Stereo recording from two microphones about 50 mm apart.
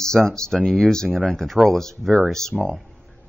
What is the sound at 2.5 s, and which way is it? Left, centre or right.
Speech, centre.